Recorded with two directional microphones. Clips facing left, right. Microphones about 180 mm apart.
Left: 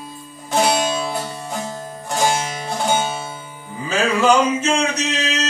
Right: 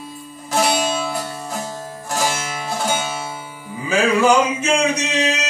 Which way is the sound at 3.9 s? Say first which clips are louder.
Right 1 dB; 15° right (ahead or behind).